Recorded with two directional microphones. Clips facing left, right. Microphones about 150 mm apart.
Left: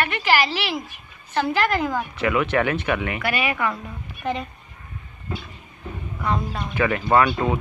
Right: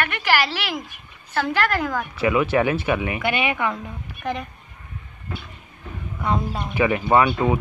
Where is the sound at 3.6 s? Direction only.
5° right (ahead or behind).